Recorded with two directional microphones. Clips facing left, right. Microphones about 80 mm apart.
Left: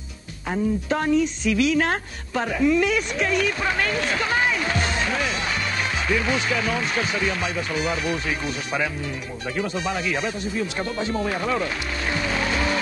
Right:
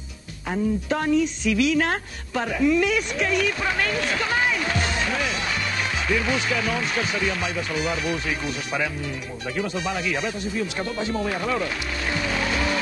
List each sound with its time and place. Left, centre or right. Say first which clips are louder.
0.5 s a woman's voice: left 1 dB; left